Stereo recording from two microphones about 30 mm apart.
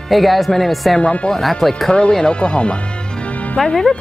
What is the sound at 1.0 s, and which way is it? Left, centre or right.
Speech, left.